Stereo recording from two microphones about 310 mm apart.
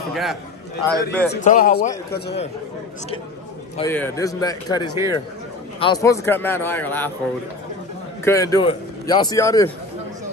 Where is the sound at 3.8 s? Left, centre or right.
Centre.